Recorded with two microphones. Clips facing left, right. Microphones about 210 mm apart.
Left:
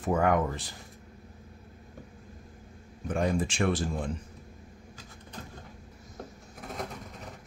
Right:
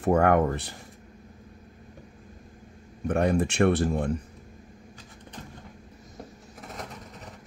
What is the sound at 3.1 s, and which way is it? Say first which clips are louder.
Speech: right 4 dB; 65° right (ahead or behind).